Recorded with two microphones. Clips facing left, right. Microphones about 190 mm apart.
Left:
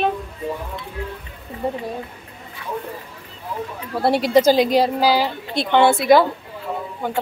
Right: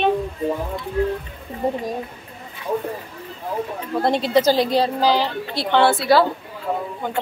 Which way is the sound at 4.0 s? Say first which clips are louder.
Left 2 dB; 10° left (ahead or behind).